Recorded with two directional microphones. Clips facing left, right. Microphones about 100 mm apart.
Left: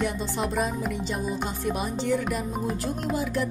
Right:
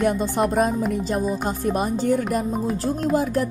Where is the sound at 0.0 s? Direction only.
50° right (ahead or behind).